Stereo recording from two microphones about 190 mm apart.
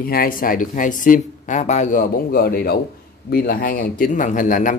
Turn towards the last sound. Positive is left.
turn(degrees=45)  # may be behind; listen again after turning